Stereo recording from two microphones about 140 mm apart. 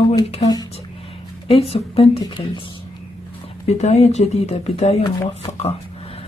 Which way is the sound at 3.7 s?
50° left (ahead or behind).